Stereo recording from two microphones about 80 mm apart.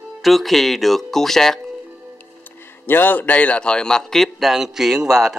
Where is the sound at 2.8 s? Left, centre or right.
Left.